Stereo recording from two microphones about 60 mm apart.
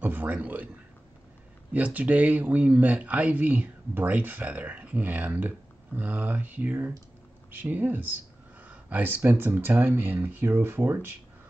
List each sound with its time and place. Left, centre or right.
0.0 s a man's voice: right
1.7 s speech: right